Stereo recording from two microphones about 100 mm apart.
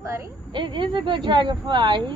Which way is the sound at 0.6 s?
55° right (ahead or behind).